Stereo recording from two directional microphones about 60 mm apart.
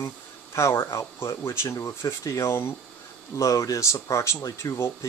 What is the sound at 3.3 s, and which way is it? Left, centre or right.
Speech, left.